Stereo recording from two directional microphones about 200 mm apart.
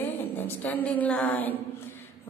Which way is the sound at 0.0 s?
10° left (ahead or behind).